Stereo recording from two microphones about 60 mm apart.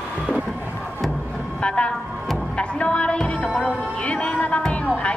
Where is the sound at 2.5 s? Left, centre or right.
Centre.